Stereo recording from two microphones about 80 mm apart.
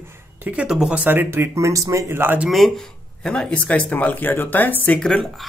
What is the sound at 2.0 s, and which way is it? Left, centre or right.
Speech, right.